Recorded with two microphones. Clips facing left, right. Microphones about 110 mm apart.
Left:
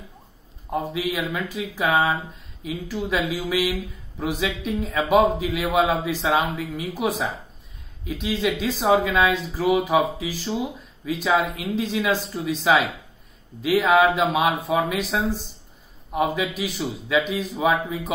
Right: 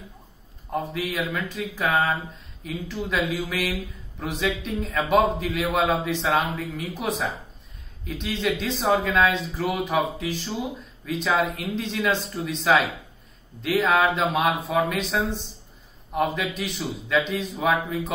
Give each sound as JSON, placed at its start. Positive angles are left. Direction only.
{"t": 0.7, "sound": "speech", "side_deg": 5}